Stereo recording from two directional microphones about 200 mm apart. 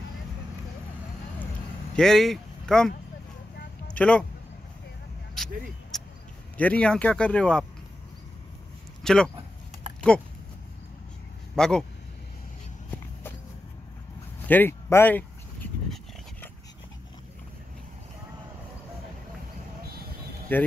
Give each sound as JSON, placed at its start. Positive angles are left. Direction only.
{"t": 2.0, "sound": "speech", "side_deg": 0}
{"t": 3.9, "sound": "speech", "side_deg": 5}
{"t": 5.3, "sound": "a sound", "side_deg": 0}
{"t": 6.5, "sound": "speech", "side_deg": 5}
{"t": 9.0, "sound": "speech", "side_deg": 5}
{"t": 11.5, "sound": "speech", "side_deg": 5}
{"t": 14.5, "sound": "dog", "side_deg": 10}
{"t": 20.5, "sound": "speech", "side_deg": 10}